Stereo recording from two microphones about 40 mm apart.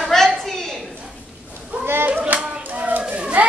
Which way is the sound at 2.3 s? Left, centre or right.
Right.